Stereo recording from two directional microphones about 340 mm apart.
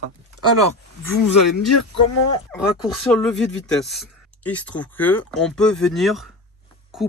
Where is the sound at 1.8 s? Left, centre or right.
Left.